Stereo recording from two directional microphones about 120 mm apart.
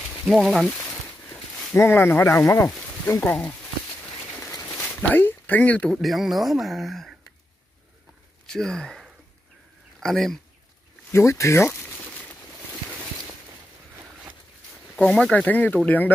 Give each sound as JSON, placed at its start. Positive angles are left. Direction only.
{"t": 0.2, "sound": "speech", "side_deg": -5}
{"t": 1.3, "sound": "speech", "side_deg": 15}
{"t": 4.4, "sound": "speech", "side_deg": 20}
{"t": 8.5, "sound": "speech", "side_deg": 5}
{"t": 11.1, "sound": "a sound", "side_deg": 25}
{"t": 15.0, "sound": "speech", "side_deg": 5}